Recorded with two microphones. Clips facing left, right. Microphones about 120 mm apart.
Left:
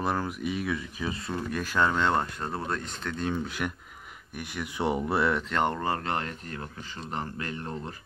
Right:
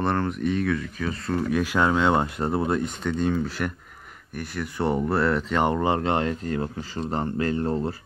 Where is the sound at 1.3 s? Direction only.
5° left (ahead or behind).